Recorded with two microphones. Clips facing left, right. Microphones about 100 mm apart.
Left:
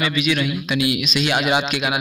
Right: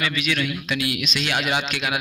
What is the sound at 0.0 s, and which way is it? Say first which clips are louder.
A man's voice: left 4 dB; 15° left (ahead or behind).